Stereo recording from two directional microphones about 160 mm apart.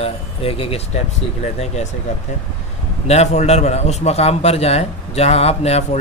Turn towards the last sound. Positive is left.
turn(degrees=40)  # may be behind; listen again after turning